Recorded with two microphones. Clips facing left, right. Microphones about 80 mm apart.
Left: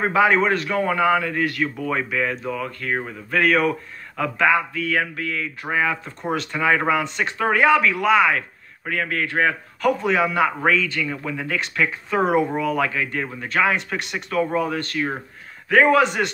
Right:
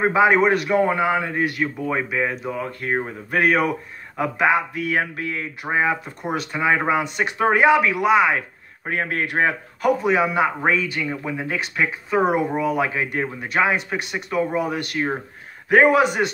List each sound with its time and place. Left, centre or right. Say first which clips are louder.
0.0 s a man's voice: right 2 dB; centre
5.2 s a man's voice: even; right
6.0 s speech: left 1 dB; centre
8.4 s speech: even; right
9.8 s a man's voice: right 1 dB; centre
11.9 s speech: even; centre
12.9 s a man's voice: right 1 dB; right; by 16.3 s centre